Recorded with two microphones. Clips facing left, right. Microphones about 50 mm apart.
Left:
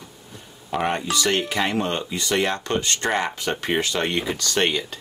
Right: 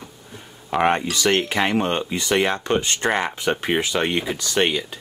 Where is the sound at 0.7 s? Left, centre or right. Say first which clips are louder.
Right 4 dB; right.